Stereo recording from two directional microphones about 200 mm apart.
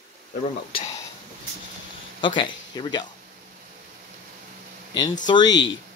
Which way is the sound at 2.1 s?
25° left (ahead or behind).